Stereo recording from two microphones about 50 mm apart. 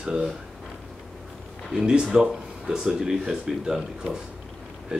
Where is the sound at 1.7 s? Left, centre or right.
Centre.